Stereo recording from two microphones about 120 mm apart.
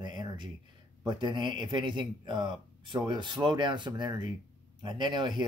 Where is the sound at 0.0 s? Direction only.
35° right (ahead or behind).